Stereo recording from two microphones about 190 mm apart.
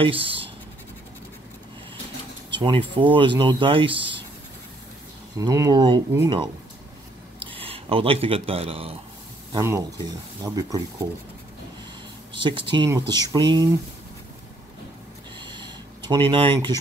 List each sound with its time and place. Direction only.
0.0 s speech: 30° right (ahead or behind)
2.5 s speech: 25° right (ahead or behind)
5.4 s speech: 20° right (ahead or behind)
9.5 s speech: 15° right (ahead or behind)
12.3 s speech: 25° right (ahead or behind)
15.3 s a sound: 25° right (ahead or behind)
16.3 s speech: 30° right (ahead or behind)